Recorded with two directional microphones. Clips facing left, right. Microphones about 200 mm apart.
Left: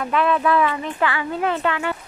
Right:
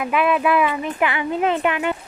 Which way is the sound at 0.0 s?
10° right (ahead or behind).